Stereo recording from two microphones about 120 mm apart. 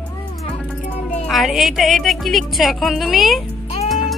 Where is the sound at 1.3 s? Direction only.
Centre (ahead or behind).